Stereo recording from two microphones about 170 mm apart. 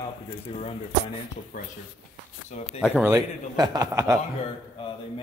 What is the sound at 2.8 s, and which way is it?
A man's voice, 10° right (ahead or behind).